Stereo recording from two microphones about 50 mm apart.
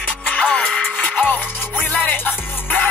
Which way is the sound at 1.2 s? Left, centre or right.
Left.